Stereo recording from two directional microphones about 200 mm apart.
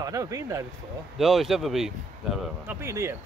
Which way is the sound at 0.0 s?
15° right (ahead or behind).